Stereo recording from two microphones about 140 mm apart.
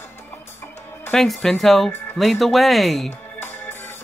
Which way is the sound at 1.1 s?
Centre (ahead or behind).